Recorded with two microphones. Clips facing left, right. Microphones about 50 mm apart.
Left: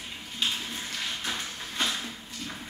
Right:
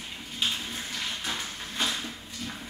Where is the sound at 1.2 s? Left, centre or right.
Centre.